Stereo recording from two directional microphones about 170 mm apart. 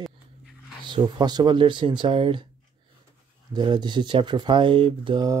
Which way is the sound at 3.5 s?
25° right (ahead or behind).